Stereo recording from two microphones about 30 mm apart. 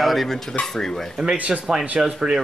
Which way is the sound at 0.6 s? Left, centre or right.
Centre.